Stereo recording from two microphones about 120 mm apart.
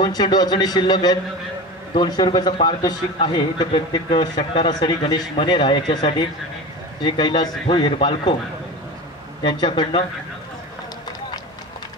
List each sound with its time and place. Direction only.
0.0 s a man's voice: 35° left (ahead or behind)
9.4 s a man's voice: 40° left (ahead or behind)